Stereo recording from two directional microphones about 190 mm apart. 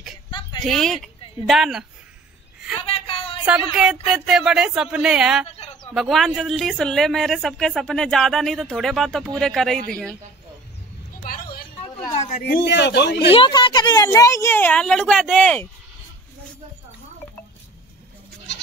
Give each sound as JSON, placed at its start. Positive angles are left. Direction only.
{"t": 0.3, "sound": "a sound", "side_deg": 25}
{"t": 0.6, "sound": "speech", "side_deg": 0}
{"t": 2.8, "sound": "a sound", "side_deg": 30}
{"t": 3.7, "sound": "speech", "side_deg": -5}
{"t": 5.5, "sound": "bird", "side_deg": 35}
{"t": 5.9, "sound": "speech", "side_deg": 0}
{"t": 11.2, "sound": "a sound", "side_deg": 50}
{"t": 12.4, "sound": "speech", "side_deg": 65}
{"t": 13.3, "sound": "a woman's voice", "side_deg": 25}